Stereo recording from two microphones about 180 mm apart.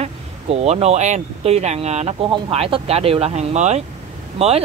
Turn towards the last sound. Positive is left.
turn(degrees=-35)  # may be behind; listen again after turning